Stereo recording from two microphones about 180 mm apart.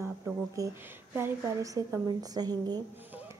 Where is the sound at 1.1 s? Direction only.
15° right (ahead or behind).